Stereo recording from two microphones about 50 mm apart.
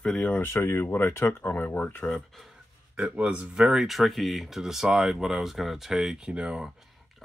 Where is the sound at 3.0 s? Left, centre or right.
Right.